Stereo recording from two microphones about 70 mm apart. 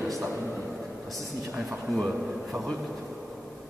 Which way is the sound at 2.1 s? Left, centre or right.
Centre.